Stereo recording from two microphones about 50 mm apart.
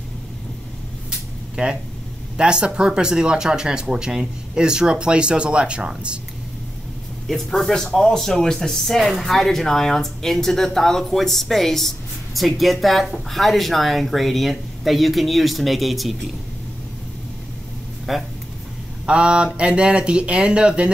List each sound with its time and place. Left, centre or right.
1.6 s speech: centre
7.2 s speech: centre
18.1 s speech: centre
19.0 s speech: right